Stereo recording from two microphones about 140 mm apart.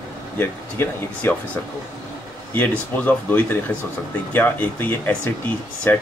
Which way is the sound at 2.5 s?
10° left (ahead or behind).